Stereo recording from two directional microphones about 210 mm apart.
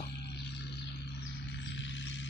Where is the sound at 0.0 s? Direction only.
55° left (ahead or behind).